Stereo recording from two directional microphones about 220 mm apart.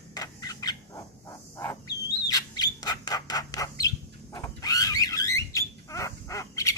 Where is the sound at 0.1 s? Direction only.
15° left (ahead or behind).